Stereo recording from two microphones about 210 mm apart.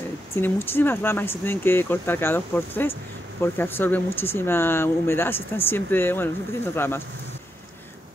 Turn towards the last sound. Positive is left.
turn(degrees=10)  # may be behind; listen again after turning